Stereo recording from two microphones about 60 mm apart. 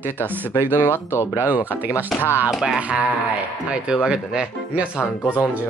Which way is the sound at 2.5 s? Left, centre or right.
Centre.